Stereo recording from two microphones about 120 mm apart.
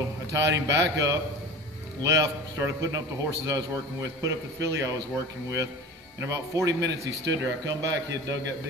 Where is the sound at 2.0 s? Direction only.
25° right (ahead or behind).